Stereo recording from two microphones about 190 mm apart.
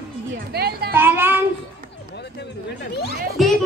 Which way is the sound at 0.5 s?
55° right (ahead or behind).